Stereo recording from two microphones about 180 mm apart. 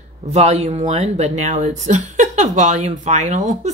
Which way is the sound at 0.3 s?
35° right (ahead or behind).